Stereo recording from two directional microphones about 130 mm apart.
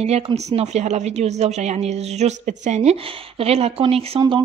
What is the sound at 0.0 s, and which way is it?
Speech, 55° right (ahead or behind).